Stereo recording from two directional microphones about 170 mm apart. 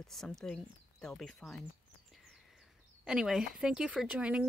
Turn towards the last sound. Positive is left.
turn(degrees=-5)  # may be behind; listen again after turning